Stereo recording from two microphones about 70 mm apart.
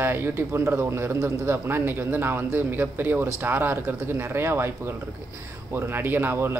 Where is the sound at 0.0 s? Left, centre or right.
Right.